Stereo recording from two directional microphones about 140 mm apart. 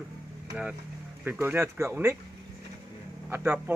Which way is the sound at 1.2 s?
15° right (ahead or behind).